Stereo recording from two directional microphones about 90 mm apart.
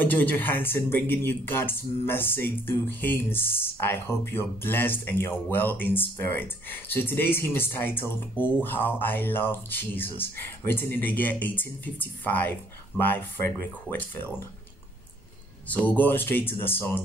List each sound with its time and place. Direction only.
0.0 s speech: 20° left (ahead or behind)
15.7 s speech: 15° left (ahead or behind)